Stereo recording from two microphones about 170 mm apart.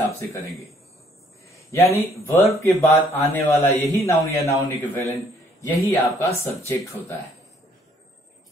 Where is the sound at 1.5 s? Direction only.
15° left (ahead or behind).